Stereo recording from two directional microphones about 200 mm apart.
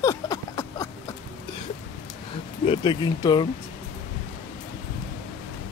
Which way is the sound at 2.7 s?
20° left (ahead or behind).